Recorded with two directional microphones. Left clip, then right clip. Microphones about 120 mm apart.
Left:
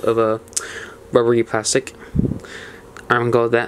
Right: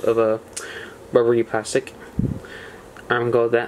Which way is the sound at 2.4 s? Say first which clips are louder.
Left 2 dB; 35° left (ahead or behind).